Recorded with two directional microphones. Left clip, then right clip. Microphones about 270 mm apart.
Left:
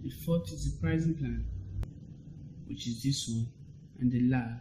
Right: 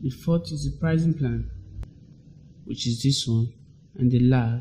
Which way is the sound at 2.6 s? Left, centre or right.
Right.